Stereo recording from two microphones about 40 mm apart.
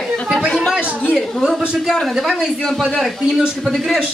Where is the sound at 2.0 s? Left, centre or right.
Centre.